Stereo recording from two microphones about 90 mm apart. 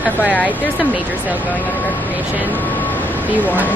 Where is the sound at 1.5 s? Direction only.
20° left (ahead or behind).